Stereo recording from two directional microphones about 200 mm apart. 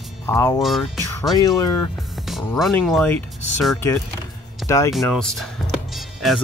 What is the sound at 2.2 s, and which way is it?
Speech, centre (ahead or behind).